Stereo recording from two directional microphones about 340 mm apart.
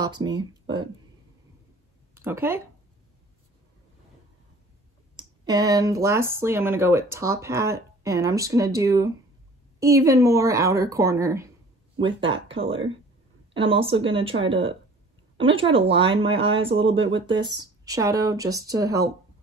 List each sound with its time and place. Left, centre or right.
0.0 s speech: centre
2.1 s speech: centre
5.1 s speech: centre